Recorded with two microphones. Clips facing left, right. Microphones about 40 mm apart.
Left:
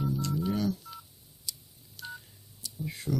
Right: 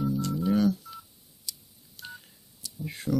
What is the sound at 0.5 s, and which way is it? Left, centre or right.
Telephone dialing, right.